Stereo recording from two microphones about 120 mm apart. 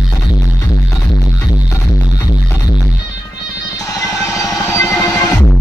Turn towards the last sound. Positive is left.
turn(degrees=25)  # may be behind; listen again after turning